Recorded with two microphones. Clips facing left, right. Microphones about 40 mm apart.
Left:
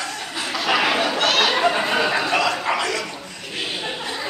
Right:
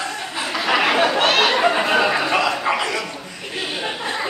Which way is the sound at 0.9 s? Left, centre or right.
Right.